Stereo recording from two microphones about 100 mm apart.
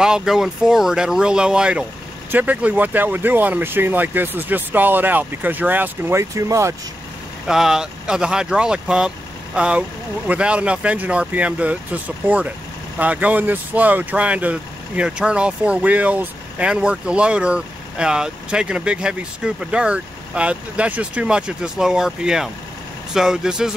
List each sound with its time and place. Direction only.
0.0 s speech: 5° right (ahead or behind); by 6.7 s 30° right (ahead or behind)
7.4 s speech: 5° right (ahead or behind)